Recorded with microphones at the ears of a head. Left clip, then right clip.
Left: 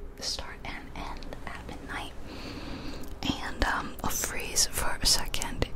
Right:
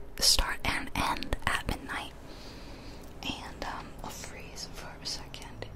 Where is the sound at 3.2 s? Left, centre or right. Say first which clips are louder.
Left 6 dB; left.